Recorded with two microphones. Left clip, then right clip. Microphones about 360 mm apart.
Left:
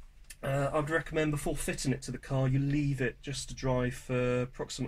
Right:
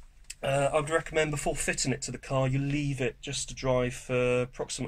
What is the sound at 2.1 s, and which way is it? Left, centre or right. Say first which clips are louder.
Speech: right 9 dB; right.